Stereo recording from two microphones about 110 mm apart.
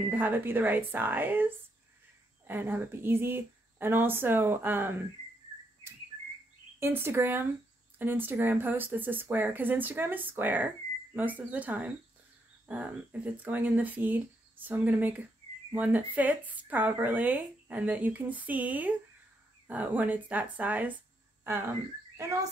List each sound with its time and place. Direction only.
0.1 s speech: 15° right (ahead or behind)
6.8 s speech: 25° right (ahead or behind)
22.1 s speech: 30° right (ahead or behind)